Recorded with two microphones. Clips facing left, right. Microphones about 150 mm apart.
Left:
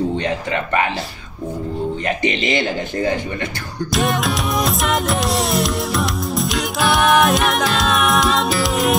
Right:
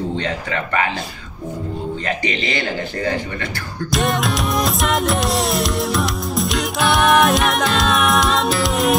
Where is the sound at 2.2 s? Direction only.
20° left (ahead or behind).